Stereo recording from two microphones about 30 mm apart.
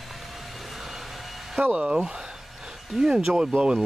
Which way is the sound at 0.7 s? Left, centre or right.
Centre.